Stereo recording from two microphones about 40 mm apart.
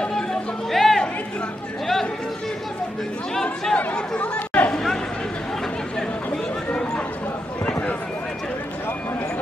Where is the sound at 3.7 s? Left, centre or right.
Left.